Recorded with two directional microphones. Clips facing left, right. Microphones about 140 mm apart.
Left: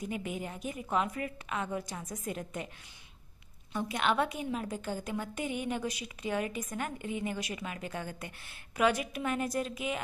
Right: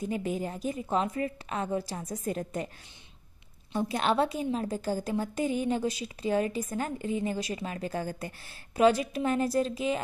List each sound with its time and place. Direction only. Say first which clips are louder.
0.0 s a woman's voice: right 5 dB; 35° right (ahead or behind)
3.7 s a woman's voice: right 3 dB; 35° right (ahead or behind)